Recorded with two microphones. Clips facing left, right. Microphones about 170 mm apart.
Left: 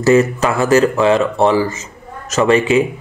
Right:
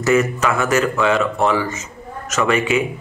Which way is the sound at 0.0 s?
30° left (ahead or behind).